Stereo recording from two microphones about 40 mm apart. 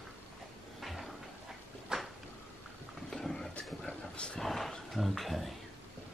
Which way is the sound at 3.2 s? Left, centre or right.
Centre.